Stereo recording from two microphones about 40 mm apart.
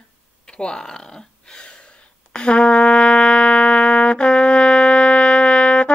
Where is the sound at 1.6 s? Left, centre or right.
Left.